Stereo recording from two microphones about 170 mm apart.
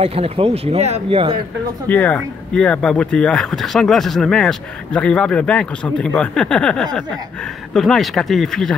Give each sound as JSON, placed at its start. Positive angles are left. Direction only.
{"t": 0.0, "sound": "speech", "side_deg": -35}
{"t": 1.9, "sound": "speech", "side_deg": 10}